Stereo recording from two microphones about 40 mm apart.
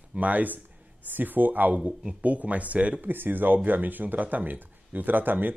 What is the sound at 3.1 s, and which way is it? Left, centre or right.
Speech, right.